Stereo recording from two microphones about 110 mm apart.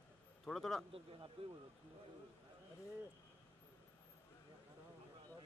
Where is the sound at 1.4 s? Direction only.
60° right (ahead or behind).